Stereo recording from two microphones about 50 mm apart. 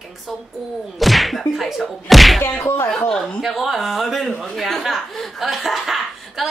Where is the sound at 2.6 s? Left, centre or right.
Left.